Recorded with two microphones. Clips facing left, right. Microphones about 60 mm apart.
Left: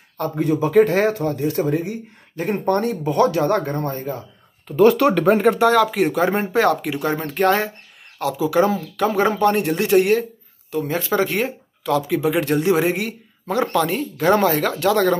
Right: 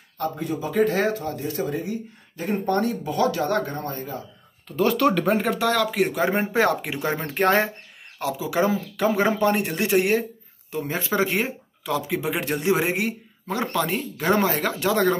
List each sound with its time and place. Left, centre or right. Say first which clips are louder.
0.2 s speech: left 7 dB; left
2.5 s speech: left 3 dB; left
5.0 s speech: left 4 dB; left
5.4 s speech: left 8 dB; left
5.7 s speech: left 5 dB; centre
6.5 s speech: left 4 dB; centre
8.2 s speech: left 5 dB; centre
13.5 s speech: left 5 dB; centre